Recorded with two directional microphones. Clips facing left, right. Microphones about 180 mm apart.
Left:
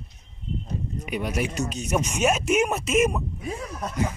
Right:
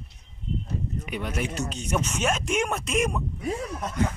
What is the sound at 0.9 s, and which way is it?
Speech, 10° left (ahead or behind).